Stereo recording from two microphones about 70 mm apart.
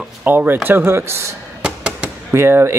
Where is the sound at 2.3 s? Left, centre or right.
Right.